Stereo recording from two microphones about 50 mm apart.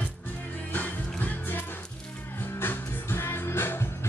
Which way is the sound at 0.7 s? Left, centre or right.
Left.